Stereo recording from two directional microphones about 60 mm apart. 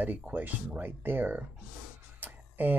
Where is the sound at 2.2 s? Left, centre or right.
Right.